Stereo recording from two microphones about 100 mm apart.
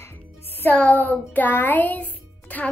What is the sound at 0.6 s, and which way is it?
Speech, 15° left (ahead or behind).